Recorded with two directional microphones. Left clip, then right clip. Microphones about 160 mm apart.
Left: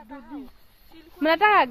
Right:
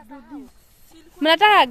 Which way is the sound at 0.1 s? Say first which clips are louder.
Even; 5° left (ahead or behind).